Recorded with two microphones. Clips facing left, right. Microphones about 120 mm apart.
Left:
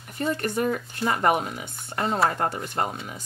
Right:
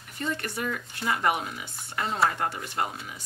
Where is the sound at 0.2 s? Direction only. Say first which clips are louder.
Left 6 dB; 40° left (ahead or behind).